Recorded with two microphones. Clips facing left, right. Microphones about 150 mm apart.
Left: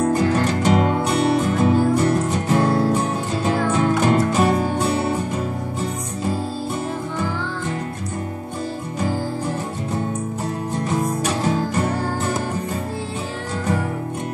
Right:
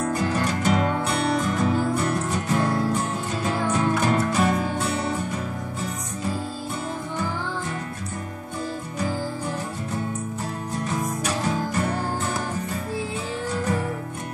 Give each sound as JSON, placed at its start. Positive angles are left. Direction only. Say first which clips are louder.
{"t": 0.0, "sound": "music", "louder": "left 6 dB", "side_deg": 30}